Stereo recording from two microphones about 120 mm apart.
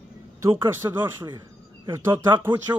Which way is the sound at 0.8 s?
30° right (ahead or behind).